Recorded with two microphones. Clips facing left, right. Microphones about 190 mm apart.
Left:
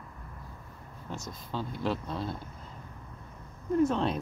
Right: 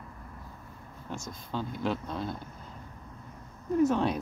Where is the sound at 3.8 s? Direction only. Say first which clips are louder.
Right 2 dB; 5° right (ahead or behind).